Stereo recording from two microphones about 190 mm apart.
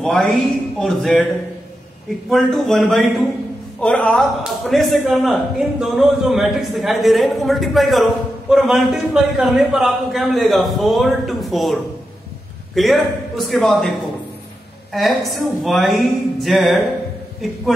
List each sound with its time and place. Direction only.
0.0 s speech: centre (ahead or behind)
2.2 s speech: centre (ahead or behind)